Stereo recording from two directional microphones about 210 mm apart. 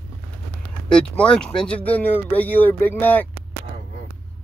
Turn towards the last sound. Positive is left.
turn(degrees=10)  # may be behind; listen again after turning